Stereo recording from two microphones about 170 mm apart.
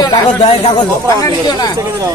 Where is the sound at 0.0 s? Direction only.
30° left (ahead or behind).